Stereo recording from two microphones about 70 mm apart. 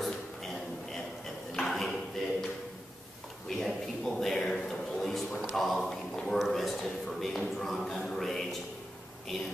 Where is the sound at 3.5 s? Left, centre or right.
Centre.